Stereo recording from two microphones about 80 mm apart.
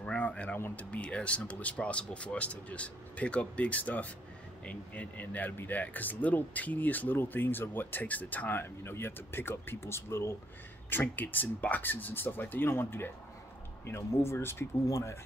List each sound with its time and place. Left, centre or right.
0.0 s speech: centre; by 15.1 s left